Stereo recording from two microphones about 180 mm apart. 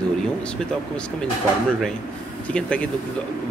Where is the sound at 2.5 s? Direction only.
5° left (ahead or behind).